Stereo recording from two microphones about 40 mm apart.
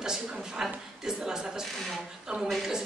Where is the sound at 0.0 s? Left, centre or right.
Centre.